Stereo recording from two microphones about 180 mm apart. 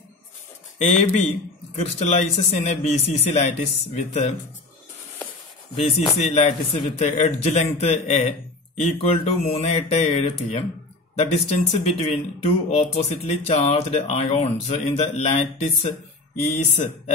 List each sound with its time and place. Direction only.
0.7 s speech: 35° left (ahead or behind)
6.1 s speech: 35° left (ahead or behind)